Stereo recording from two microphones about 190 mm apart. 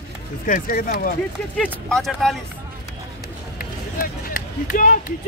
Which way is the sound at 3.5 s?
45° left (ahead or behind).